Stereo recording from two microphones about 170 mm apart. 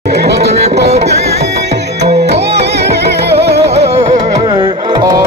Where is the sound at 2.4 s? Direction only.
75° right (ahead or behind).